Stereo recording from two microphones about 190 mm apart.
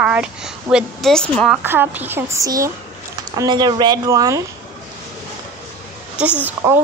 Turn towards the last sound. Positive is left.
turn(degrees=-15)  # may be behind; listen again after turning